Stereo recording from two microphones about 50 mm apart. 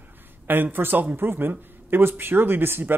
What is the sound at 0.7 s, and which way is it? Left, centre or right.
Speech, right.